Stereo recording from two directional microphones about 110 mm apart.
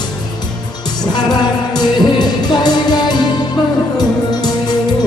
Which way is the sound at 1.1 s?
40° left (ahead or behind).